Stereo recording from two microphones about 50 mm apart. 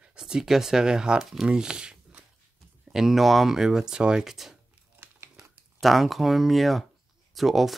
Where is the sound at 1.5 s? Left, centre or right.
Centre.